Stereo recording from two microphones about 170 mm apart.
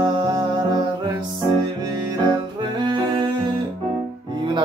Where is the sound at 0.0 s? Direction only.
25° right (ahead or behind).